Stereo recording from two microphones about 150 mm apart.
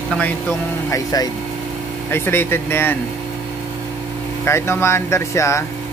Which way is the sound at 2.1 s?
15° left (ahead or behind).